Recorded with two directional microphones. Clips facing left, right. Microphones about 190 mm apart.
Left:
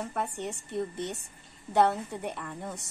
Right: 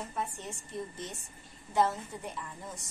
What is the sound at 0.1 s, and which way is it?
A woman's voice, 65° left (ahead or behind).